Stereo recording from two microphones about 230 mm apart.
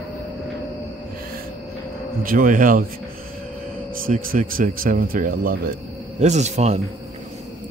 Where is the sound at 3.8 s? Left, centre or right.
Right.